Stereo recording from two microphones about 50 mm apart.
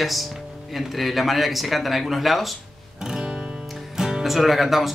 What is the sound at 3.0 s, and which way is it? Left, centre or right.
Guitar, centre.